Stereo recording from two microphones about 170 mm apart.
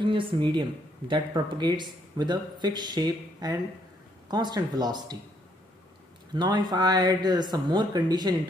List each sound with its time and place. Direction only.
0.0 s speech: 30° right (ahead or behind)
6.3 s speech: 25° right (ahead or behind)